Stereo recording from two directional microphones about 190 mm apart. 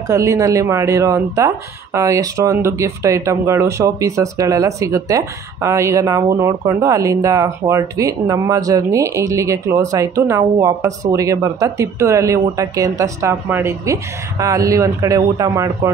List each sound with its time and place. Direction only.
0.1 s speech: 15° right (ahead or behind)